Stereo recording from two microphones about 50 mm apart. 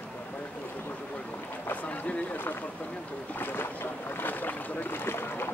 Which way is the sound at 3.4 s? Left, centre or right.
Left.